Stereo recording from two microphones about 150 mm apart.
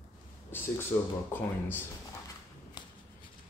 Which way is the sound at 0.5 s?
15° left (ahead or behind).